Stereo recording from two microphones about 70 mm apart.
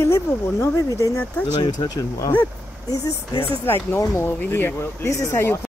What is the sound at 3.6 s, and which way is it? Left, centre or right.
Speech, left.